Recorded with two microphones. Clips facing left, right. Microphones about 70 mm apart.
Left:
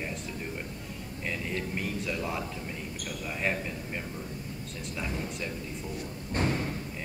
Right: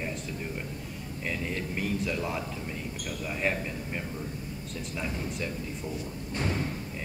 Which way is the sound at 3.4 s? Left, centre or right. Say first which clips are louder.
Right 1 dB; centre.